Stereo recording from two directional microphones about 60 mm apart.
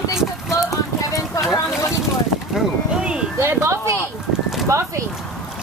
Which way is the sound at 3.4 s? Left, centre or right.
Right.